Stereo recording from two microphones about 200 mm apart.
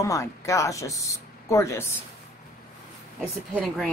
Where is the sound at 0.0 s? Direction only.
15° left (ahead or behind).